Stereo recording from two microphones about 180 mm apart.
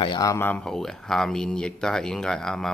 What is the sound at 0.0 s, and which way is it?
Speech, 20° left (ahead or behind).